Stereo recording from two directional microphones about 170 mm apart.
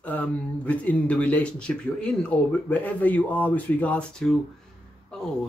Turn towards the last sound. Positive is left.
turn(degrees=0)  # may be behind; listen again after turning